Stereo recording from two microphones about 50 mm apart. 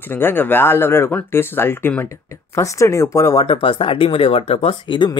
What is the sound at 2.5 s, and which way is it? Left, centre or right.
Speech, left.